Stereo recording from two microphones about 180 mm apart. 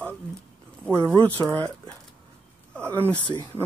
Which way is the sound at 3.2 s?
25° left (ahead or behind).